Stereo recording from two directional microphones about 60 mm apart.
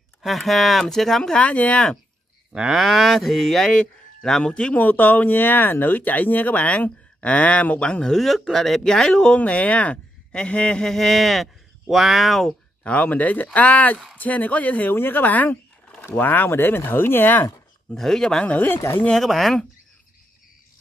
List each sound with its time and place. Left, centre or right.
0.2 s speech: centre
1.3 s speech: left
2.5 s speech: centre
2.8 s speech: centre
4.7 s speech: left
8.1 s speech: centre
9.4 s speech: left; by 12.5 s centre
12.8 s speech: left
17.9 s speech: centre
18.4 s speech: left
19.1 s speech: centre